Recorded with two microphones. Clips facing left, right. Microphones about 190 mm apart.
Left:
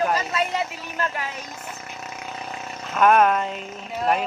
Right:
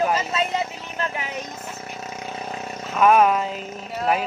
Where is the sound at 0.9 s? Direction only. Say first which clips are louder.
Even; 20° right (ahead or behind).